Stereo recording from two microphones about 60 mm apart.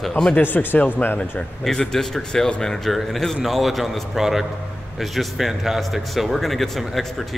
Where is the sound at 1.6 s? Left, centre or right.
Centre.